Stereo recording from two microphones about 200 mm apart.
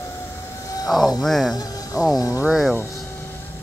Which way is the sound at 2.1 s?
15° left (ahead or behind).